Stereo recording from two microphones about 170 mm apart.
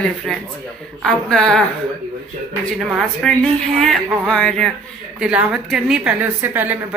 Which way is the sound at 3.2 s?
5° left (ahead or behind).